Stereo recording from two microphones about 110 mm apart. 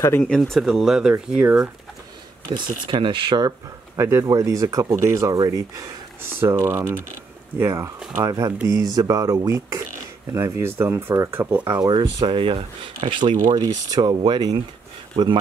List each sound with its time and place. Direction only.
0.0 s speech: 20° left (ahead or behind)
0.3 s speech: centre (ahead or behind)
2.5 s speech: 45° right (ahead or behind)
6.4 s speech: 25° right (ahead or behind); by 13.6 s 45° right (ahead or behind)
13.6 s speech: 35° right (ahead or behind)